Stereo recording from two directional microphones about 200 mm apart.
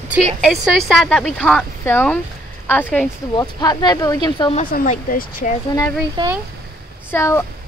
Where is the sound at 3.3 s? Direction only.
20° left (ahead or behind).